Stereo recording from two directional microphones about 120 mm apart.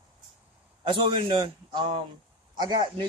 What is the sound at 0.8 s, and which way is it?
A man's voice, 40° right (ahead or behind).